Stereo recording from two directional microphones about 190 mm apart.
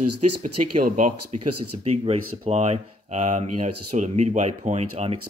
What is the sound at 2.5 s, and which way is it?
Speech, 35° right (ahead or behind).